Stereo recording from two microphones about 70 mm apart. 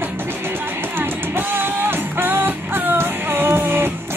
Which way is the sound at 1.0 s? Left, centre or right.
Right.